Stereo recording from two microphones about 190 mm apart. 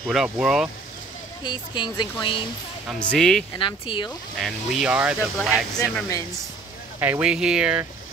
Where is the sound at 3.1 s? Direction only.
5° left (ahead or behind).